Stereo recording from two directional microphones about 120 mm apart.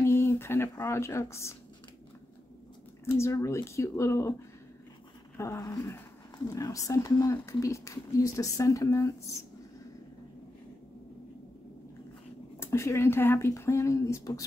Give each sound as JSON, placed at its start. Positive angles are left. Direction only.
{"t": 0.0, "sound": "speech", "side_deg": 20}
{"t": 3.2, "sound": "speech", "side_deg": 25}
{"t": 5.6, "sound": "speech", "side_deg": 25}
{"t": 12.5, "sound": "speech", "side_deg": 20}